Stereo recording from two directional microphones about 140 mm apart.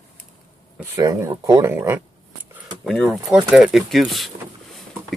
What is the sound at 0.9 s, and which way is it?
Speech, 20° right (ahead or behind).